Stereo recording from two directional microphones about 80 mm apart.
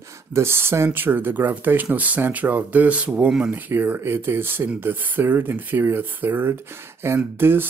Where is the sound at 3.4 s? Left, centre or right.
Right.